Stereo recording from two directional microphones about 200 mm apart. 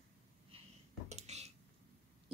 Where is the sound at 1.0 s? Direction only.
35° right (ahead or behind).